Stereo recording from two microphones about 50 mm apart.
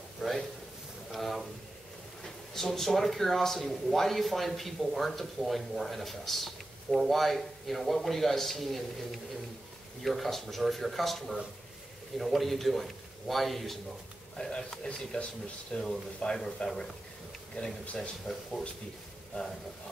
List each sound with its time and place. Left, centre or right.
0.2 s a sound: centre
2.2 s speech: centre
14.3 s speech: centre
17.9 s speech: centre